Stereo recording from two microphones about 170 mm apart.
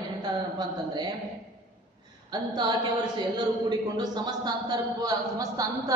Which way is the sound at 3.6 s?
25° right (ahead or behind).